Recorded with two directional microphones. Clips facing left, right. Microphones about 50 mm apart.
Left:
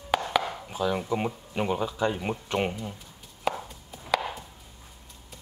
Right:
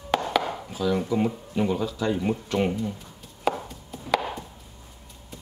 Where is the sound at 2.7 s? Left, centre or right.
Centre.